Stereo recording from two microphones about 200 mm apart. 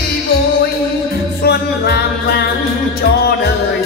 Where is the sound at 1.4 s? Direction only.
50° left (ahead or behind).